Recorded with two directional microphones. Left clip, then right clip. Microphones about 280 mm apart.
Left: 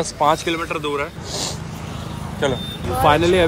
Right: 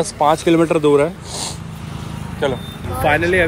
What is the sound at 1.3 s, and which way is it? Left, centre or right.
Vehicle, centre.